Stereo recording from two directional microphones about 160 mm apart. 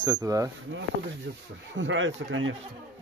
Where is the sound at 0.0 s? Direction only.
20° right (ahead or behind).